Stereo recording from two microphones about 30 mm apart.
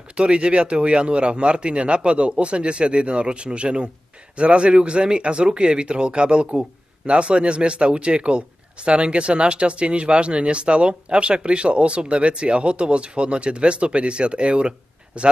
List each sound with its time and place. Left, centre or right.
0.1 s speech: right